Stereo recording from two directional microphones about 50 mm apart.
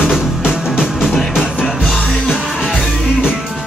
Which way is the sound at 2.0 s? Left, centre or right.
Centre.